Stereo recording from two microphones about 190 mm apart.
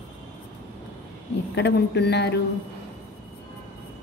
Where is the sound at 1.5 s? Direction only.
65° left (ahead or behind).